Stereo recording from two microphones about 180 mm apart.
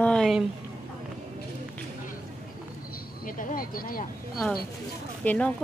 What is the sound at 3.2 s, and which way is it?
Speech, 50° left (ahead or behind).